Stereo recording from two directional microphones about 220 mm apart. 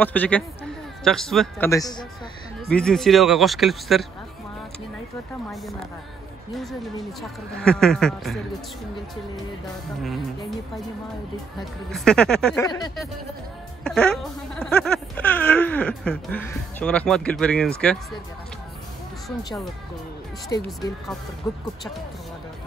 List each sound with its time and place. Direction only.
0.0 s speech: 5° left (ahead or behind)
1.7 s speech: 15° left (ahead or behind)
2.7 s speech: 5° left (ahead or behind)
7.2 s speech: 5° left (ahead or behind)
10.0 s speech: centre (ahead or behind)
11.9 s speech: 5° left (ahead or behind)
12.6 s speech: 15° left (ahead or behind)
13.8 s speech: 5° left (ahead or behind)
19.2 s speech: centre (ahead or behind)
20.5 s speech: 15° left (ahead or behind)